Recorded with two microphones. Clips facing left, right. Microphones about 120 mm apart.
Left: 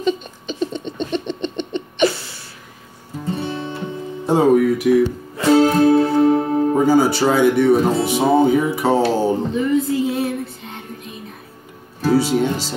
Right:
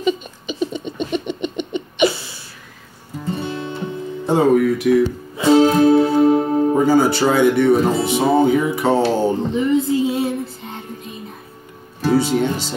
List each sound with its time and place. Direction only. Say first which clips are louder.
0.0 s a sound: even; 5° right (ahead or behind)
3.3 s music: even; 5° left (ahead or behind)
4.3 s speech: left 1 dB; 10° left (ahead or behind)
5.4 s music: right 1 dB; 15° right (ahead or behind)
6.8 s speech: left 1 dB; 5° left (ahead or behind)
8.0 s music: even; 5° left (ahead or behind)
9.1 s speech: even; 5° left (ahead or behind)
9.5 s female singing: right 1 dB; 25° right (ahead or behind)
12.0 s music: even; 5° left (ahead or behind)